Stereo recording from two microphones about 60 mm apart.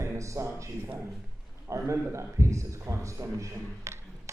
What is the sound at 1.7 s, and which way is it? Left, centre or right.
A man's voice, right.